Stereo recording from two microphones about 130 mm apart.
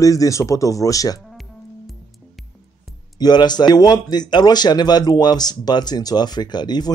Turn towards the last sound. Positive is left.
turn(degrees=35)  # may be behind; listen again after turning